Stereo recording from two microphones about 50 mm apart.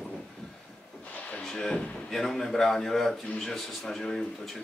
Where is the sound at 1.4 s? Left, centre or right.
Centre.